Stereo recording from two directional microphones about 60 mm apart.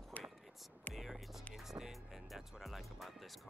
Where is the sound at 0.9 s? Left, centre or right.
Centre.